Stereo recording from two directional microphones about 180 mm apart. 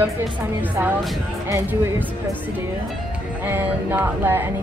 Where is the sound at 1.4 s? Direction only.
15° right (ahead or behind).